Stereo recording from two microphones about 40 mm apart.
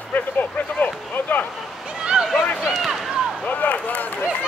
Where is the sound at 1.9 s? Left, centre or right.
Right.